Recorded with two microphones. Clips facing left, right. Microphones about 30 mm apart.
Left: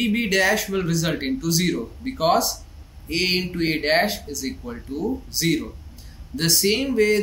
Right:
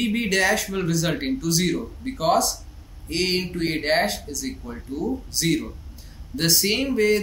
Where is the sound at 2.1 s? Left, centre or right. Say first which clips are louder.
Left 1 dB; centre.